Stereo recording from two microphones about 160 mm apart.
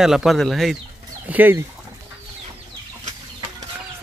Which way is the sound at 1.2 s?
10° right (ahead or behind).